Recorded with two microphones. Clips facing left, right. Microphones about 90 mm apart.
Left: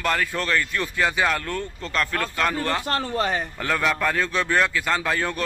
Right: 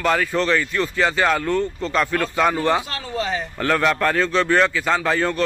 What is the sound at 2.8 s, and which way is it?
Speech, 50° left (ahead or behind).